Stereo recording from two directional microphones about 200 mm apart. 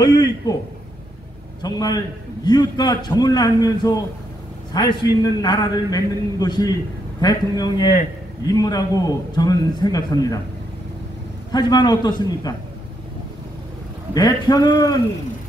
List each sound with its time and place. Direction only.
0.0 s a man's voice: 20° left (ahead or behind)
1.6 s a man's voice: 20° left (ahead or behind)
11.5 s a man's voice: 20° left (ahead or behind)
14.1 s a man's voice: 20° left (ahead or behind)